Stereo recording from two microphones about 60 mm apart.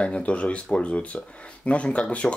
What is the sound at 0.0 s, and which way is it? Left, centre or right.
Speech, centre.